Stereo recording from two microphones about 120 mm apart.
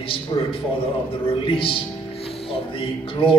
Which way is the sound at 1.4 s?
50° left (ahead or behind).